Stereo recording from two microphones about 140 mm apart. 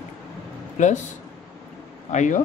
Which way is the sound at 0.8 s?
60° left (ahead or behind).